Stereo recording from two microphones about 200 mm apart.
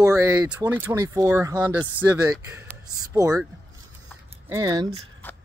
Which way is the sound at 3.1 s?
15° right (ahead or behind).